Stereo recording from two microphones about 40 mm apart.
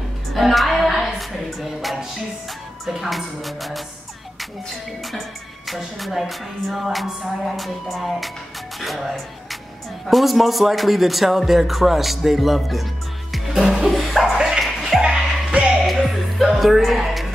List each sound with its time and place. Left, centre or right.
0.3 s music: centre
2.8 s a man's voice: centre
5.7 s a man's voice: centre
13.5 s music: centre
15.0 s music: right
15.8 s music: centre